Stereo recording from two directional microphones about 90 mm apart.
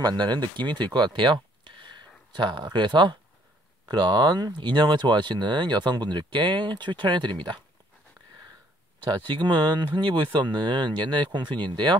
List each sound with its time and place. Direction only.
0.0 s speech: 55° right (ahead or behind)
9.0 s speech: 65° right (ahead or behind)